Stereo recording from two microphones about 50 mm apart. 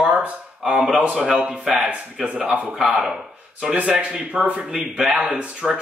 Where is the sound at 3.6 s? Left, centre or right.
Centre.